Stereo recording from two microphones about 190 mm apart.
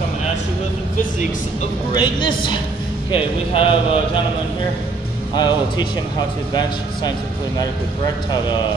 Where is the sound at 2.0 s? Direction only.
25° left (ahead or behind).